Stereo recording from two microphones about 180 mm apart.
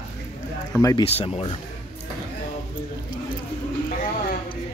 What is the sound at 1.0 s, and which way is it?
Speech, 35° left (ahead or behind).